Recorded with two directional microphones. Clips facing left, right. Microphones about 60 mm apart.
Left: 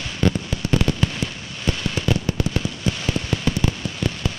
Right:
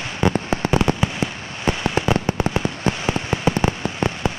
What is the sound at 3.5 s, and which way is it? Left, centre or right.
Fireworks, right.